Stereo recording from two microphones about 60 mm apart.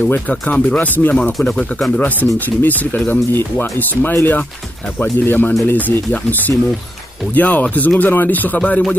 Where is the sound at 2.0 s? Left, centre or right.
Left.